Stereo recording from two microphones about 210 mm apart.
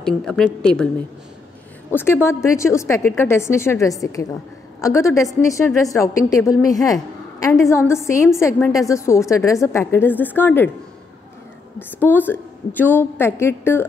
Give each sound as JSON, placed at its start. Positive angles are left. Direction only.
{"t": 0.0, "sound": "a woman's voice", "side_deg": 5}
{"t": 2.0, "sound": "a woman's voice", "side_deg": 10}
{"t": 12.0, "sound": "a woman's voice", "side_deg": 10}